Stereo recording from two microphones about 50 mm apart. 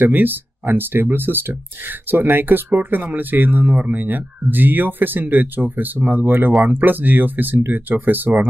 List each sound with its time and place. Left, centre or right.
0.0 s speech: right